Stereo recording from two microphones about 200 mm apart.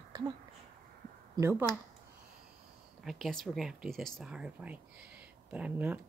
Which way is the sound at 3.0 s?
Centre (ahead or behind).